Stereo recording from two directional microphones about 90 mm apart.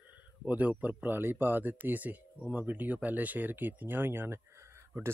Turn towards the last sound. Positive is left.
turn(degrees=-30)  # may be behind; listen again after turning